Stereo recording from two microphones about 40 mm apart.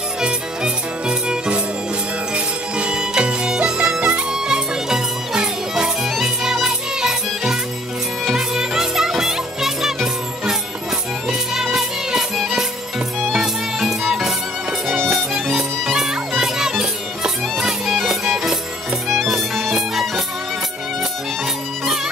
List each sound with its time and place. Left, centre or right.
0.2 s music: right